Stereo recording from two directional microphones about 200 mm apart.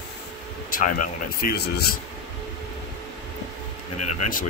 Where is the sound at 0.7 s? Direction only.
45° left (ahead or behind).